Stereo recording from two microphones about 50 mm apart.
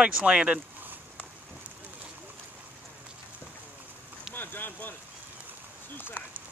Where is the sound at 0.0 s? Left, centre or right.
Right.